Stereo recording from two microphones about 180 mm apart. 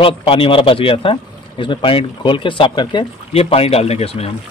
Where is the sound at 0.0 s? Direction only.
30° left (ahead or behind).